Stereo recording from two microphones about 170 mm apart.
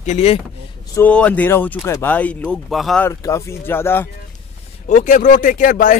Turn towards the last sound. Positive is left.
turn(degrees=50)  # may be behind; listen again after turning